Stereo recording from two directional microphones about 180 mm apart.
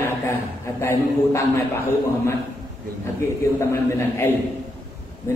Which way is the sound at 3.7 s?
15° left (ahead or behind).